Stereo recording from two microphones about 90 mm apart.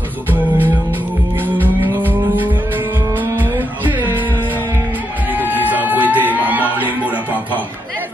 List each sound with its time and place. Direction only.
2.0 s music: 20° right (ahead or behind)
5.3 s music: 20° right (ahead or behind)
6.4 s a sound: 20° right (ahead or behind)